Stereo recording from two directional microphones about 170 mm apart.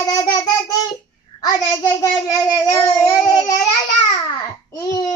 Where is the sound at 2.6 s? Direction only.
15° left (ahead or behind).